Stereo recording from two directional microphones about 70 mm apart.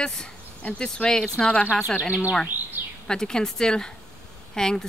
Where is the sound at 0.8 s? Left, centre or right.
Centre.